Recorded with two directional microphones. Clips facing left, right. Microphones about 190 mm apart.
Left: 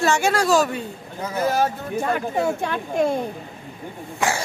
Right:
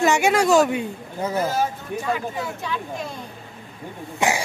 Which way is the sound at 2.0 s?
55° left (ahead or behind).